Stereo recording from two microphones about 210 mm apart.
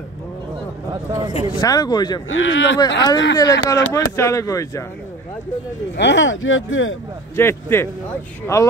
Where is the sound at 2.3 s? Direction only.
65° left (ahead or behind).